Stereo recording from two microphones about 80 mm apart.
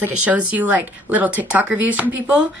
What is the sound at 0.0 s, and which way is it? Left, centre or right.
A woman's voice, centre.